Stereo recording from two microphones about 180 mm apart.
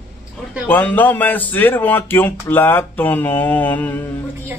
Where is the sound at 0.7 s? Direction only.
10° left (ahead or behind).